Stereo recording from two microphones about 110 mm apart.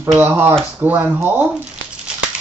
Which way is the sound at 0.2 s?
20° right (ahead or behind).